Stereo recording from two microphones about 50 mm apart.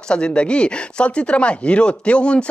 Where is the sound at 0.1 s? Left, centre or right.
Centre.